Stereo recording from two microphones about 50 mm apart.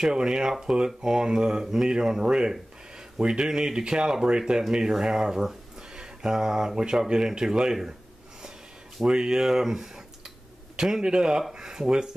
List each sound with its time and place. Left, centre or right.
0.0 s speech: centre
9.0 s speech: centre